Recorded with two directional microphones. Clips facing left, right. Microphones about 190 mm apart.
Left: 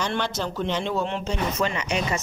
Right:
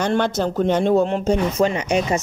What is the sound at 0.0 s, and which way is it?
Speech, 50° right (ahead or behind).